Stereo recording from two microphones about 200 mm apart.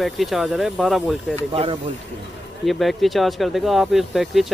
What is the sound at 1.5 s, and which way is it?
Speech, 30° right (ahead or behind).